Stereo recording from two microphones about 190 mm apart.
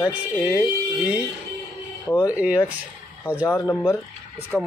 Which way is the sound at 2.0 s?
15° left (ahead or behind).